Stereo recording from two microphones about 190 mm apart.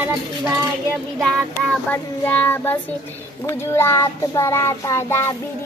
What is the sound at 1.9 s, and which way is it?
Speech, 10° left (ahead or behind).